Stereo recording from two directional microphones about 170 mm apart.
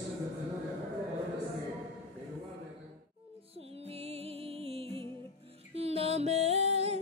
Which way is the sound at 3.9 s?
35° right (ahead or behind).